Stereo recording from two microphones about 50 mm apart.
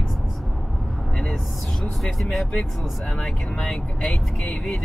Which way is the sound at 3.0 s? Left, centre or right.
Left.